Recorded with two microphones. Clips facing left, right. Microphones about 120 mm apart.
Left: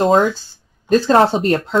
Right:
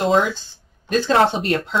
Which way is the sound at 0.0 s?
40° left (ahead or behind).